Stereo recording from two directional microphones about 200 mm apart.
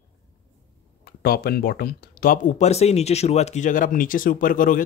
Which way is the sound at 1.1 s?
50° left (ahead or behind).